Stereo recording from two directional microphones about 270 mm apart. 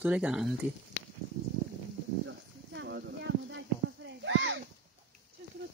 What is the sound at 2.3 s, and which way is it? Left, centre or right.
Clip-clop, right.